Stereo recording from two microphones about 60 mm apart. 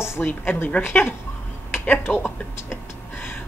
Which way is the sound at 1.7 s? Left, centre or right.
Left.